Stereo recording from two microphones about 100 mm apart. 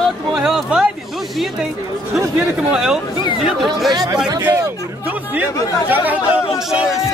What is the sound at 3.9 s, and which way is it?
Speech, 40° right (ahead or behind).